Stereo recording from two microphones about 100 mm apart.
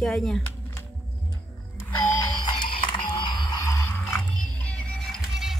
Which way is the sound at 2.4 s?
55° left (ahead or behind).